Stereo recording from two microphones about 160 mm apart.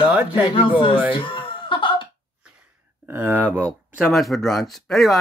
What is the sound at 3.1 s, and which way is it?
Speech, 15° right (ahead or behind).